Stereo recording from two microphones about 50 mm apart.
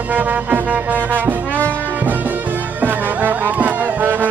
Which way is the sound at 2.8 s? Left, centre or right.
Right.